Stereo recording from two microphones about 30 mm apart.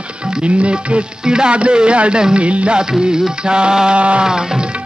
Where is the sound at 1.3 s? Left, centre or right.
Right.